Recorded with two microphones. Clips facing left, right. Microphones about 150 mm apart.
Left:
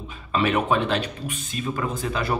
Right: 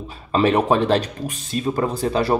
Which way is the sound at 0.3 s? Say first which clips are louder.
Right 5 dB; 35° right (ahead or behind).